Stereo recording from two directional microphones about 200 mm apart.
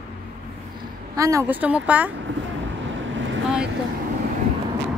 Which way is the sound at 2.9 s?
70° right (ahead or behind).